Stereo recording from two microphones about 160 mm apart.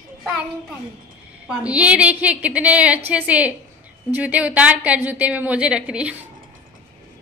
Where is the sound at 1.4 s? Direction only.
5° right (ahead or behind).